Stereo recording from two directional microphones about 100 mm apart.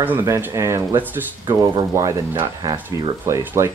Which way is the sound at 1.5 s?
50° right (ahead or behind).